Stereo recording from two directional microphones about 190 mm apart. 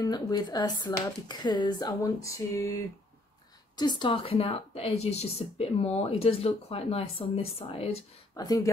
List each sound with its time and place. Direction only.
0.0 s speech: 20° left (ahead or behind)
3.7 s speech: 20° left (ahead or behind)
8.4 s speech: 20° left (ahead or behind)